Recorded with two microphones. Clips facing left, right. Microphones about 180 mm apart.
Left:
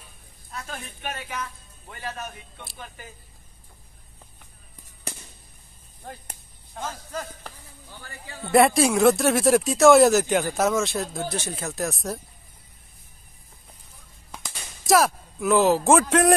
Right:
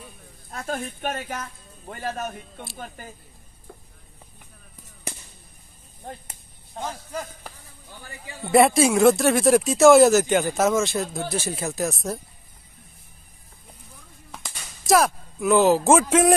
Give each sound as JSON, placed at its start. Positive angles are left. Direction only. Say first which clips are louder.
{"t": 0.5, "sound": "speech", "louder": "right 7 dB", "side_deg": -50}
{"t": 6.8, "sound": "speech", "louder": "right 1 dB", "side_deg": -15}
{"t": 8.5, "sound": "speech", "louder": "right 1 dB", "side_deg": 0}
{"t": 14.3, "sound": "a sound", "louder": "left 1 dB", "side_deg": 0}